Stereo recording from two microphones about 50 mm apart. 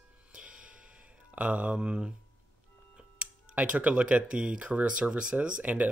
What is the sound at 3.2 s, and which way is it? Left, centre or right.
Speech, right.